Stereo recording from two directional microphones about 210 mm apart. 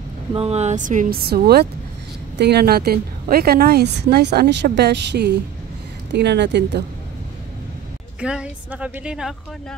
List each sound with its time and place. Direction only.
0.3 s a woman's voice: 30° right (ahead or behind); by 6.8 s 55° right (ahead or behind)
8.2 s speech: 5° right (ahead or behind)